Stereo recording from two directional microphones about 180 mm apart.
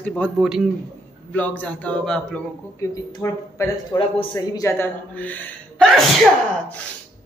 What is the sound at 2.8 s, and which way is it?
A man's voice, 20° left (ahead or behind).